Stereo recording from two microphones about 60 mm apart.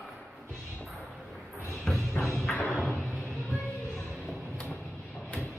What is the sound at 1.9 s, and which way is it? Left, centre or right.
Music, centre.